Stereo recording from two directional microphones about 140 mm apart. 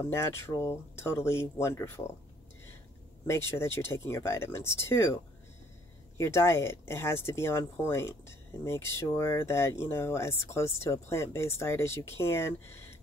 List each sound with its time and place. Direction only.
0.0 s speech: 20° left (ahead or behind)
3.3 s speech: 20° left (ahead or behind)